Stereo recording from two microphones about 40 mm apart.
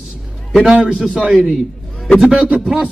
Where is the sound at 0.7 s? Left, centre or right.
Right.